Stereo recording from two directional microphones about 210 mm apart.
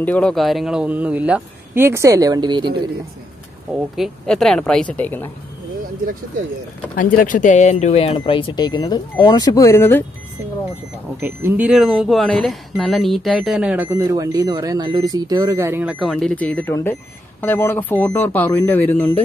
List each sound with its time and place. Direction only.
0.0 s speech: 5° left (ahead or behind); by 2.8 s 20° right (ahead or behind)
3.9 s speech: centre (ahead or behind)
7.0 s speech: 40° left (ahead or behind); by 10.0 s 10° left (ahead or behind)
11.1 s speech: 10° right (ahead or behind); by 19.1 s 10° left (ahead or behind)